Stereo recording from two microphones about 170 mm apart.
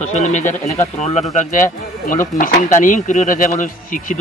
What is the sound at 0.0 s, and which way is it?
Speech, 45° left (ahead or behind).